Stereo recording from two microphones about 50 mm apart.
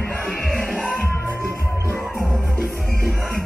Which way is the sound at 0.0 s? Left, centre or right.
Left.